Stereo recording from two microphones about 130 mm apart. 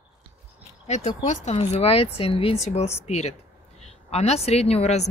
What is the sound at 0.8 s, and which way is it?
A woman's voice, 60° left (ahead or behind).